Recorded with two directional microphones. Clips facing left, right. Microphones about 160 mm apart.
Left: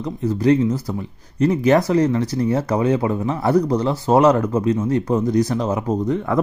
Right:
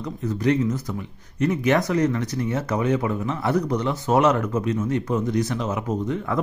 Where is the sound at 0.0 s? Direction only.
30° left (ahead or behind).